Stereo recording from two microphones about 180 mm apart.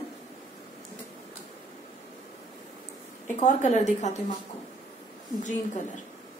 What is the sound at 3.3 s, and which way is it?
Speech, 40° left (ahead or behind).